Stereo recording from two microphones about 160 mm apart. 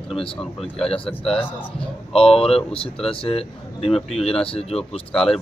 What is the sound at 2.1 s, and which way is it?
Speech, 35° left (ahead or behind).